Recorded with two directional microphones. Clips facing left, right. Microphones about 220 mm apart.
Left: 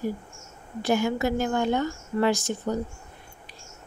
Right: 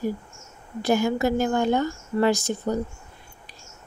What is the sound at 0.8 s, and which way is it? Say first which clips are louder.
Speech: right 2 dB; 40° right (ahead or behind).